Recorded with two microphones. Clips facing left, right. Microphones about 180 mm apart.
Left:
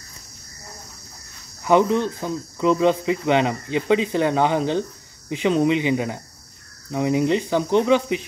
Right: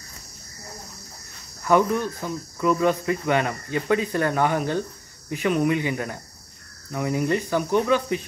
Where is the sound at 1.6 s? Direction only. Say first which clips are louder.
Left 3 dB; 20° left (ahead or behind).